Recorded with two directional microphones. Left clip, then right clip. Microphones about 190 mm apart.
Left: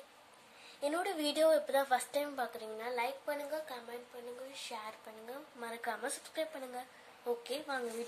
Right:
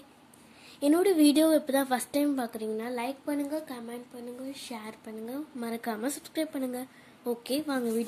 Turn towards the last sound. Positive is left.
turn(degrees=-45)  # may be behind; listen again after turning